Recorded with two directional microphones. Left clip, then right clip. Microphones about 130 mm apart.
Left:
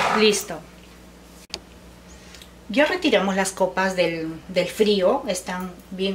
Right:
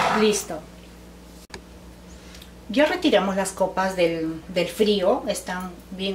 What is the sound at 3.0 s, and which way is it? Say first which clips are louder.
A woman's voice: even; 15° left (ahead or behind).